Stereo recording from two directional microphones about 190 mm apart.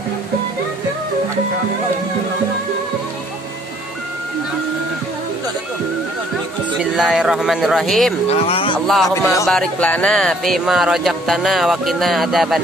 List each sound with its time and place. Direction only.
6.8 s speech: 5° right (ahead or behind)
8.3 s speech: 30° left (ahead or behind)
8.7 s speech: centre (ahead or behind)
9.1 s music: 15° left (ahead or behind)
9.5 s speech: 5° left (ahead or behind)